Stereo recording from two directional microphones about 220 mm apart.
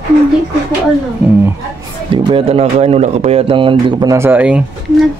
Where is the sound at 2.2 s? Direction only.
25° right (ahead or behind); by 4.6 s 5° right (ahead or behind).